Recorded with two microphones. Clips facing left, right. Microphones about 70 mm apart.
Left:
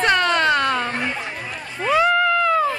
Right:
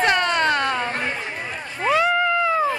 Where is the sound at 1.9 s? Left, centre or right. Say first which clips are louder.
Left 2 dB; centre.